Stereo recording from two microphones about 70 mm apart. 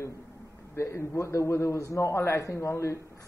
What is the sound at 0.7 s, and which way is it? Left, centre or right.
Speech, left.